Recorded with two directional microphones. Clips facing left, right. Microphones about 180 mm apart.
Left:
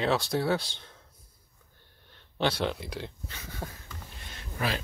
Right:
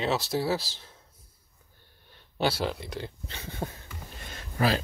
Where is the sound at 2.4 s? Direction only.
5° right (ahead or behind).